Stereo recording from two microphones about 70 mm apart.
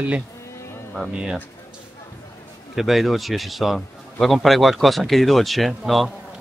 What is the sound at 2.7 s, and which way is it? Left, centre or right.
A man's voice, centre.